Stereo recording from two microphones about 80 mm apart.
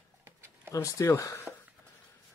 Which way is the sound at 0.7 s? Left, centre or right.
Left.